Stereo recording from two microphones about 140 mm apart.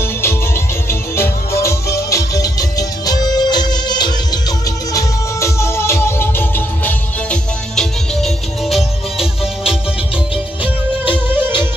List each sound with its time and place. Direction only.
0.0 s music: 20° left (ahead or behind); by 11.6 s 15° right (ahead or behind)